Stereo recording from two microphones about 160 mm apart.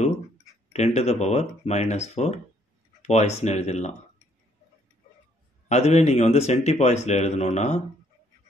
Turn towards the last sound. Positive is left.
turn(degrees=45)  # may be behind; listen again after turning